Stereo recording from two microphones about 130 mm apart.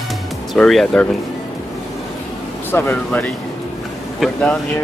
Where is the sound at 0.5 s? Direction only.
5° left (ahead or behind).